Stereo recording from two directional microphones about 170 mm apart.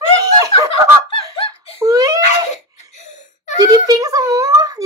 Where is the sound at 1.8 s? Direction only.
20° right (ahead or behind).